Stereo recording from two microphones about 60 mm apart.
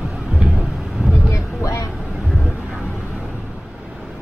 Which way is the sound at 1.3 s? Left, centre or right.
Left.